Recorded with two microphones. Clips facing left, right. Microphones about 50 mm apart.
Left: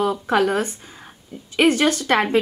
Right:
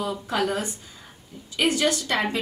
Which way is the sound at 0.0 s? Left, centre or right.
Left.